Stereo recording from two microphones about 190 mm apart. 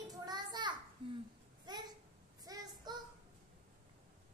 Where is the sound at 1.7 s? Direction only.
20° right (ahead or behind).